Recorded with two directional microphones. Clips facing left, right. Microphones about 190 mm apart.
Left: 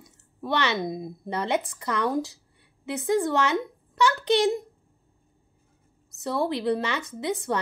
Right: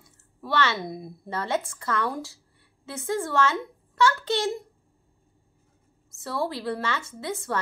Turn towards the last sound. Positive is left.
turn(degrees=20)  # may be behind; listen again after turning